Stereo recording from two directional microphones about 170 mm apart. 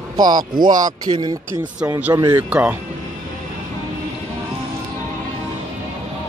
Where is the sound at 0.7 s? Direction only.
50° right (ahead or behind).